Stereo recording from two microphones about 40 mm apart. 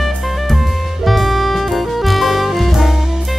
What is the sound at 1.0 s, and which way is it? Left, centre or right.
Music, centre.